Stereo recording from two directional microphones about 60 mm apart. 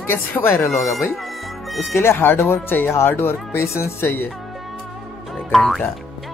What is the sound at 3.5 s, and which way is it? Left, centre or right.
Speech, left.